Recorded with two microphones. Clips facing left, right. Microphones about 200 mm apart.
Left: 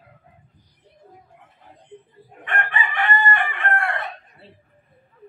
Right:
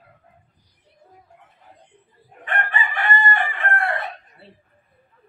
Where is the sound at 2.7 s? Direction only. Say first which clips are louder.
Left 2 dB; 35° right (ahead or behind).